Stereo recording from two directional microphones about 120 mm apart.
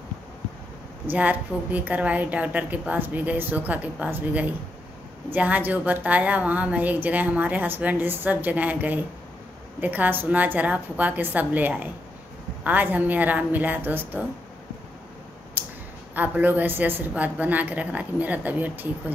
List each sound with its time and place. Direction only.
1.0 s a woman's voice: 15° right (ahead or behind)
15.6 s a sound: 15° right (ahead or behind)
16.2 s a woman's voice: 15° right (ahead or behind)